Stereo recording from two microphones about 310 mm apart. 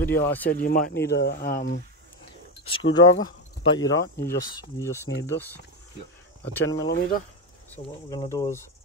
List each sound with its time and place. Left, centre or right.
0.0 s speech: centre
0.5 s speech: left
2.6 s speech: centre
6.9 s speech: left
7.7 s speech: centre